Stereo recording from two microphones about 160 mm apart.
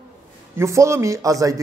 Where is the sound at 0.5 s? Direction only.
20° right (ahead or behind).